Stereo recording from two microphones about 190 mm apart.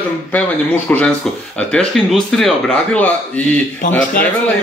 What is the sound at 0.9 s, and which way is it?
Speech, 10° left (ahead or behind).